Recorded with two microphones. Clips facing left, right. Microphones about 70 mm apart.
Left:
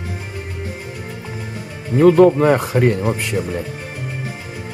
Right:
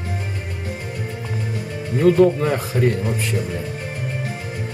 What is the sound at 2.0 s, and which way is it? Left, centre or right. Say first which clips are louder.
Speech: left 4 dB; left.